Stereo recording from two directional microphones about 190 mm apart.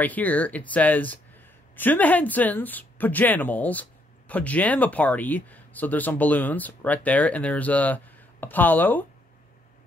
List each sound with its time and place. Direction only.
0.0 s speech: 10° left (ahead or behind)